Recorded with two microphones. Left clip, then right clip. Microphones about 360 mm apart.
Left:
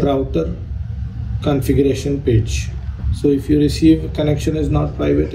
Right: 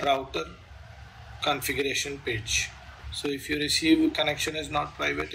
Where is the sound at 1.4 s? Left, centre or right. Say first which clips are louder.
Left 11 dB; centre.